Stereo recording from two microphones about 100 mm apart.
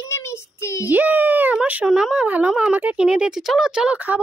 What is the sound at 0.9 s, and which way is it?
Speech, 15° right (ahead or behind).